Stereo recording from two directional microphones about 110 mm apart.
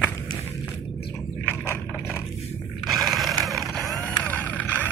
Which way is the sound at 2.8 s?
Centre (ahead or behind).